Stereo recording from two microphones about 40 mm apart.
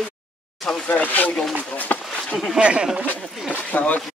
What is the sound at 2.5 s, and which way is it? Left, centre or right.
Speech, right.